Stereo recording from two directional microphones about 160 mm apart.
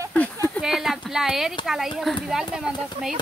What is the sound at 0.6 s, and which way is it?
Speech, centre (ahead or behind).